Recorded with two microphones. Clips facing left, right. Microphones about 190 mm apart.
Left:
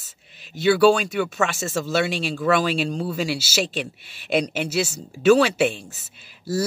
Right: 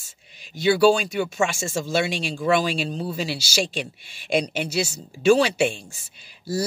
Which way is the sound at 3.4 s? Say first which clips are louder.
Left 1 dB; 5° left (ahead or behind).